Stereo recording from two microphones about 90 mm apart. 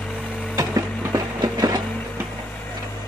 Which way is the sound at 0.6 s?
35° right (ahead or behind).